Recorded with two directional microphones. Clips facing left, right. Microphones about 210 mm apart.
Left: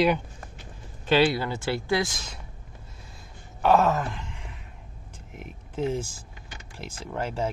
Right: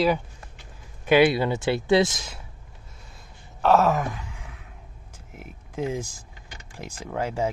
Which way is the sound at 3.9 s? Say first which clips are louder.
Right 2 dB; 15° right (ahead or behind).